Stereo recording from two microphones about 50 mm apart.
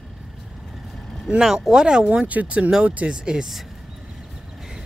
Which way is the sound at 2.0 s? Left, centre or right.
Right.